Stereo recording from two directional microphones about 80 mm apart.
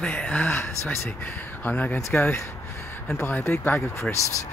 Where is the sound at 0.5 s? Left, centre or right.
Left.